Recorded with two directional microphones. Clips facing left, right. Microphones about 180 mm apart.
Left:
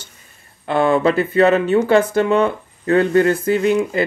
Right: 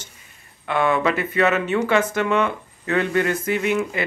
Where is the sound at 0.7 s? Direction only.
30° left (ahead or behind).